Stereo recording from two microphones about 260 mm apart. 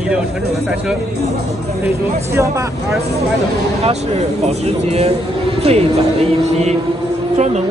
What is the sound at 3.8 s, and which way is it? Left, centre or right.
Speech, right.